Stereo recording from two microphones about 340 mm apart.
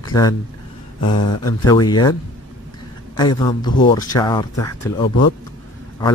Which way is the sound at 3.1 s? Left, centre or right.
Centre.